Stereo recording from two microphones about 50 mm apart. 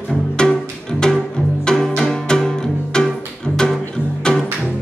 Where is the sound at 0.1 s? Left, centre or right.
Centre.